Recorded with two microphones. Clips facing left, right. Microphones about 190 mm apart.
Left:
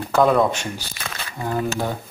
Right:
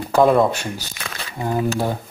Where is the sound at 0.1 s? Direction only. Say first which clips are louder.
Right 2 dB; 10° right (ahead or behind).